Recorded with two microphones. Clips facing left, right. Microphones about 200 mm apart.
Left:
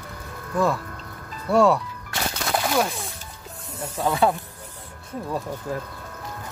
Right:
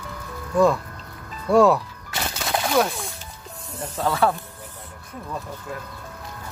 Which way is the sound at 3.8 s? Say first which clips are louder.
Even; 15° left (ahead or behind).